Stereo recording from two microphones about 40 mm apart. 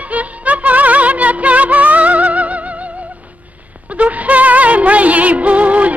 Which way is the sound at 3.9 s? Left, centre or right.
Right.